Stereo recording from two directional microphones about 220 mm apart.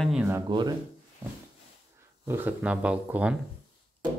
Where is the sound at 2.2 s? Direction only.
10° right (ahead or behind).